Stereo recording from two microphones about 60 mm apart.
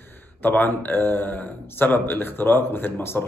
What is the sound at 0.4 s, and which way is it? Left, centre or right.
Speech, left.